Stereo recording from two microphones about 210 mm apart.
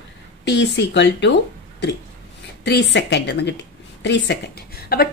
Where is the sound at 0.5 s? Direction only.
55° left (ahead or behind).